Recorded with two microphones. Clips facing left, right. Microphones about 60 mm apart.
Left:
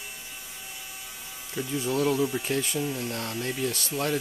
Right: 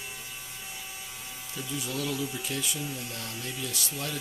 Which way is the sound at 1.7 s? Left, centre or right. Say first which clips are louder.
Left 7 dB; left.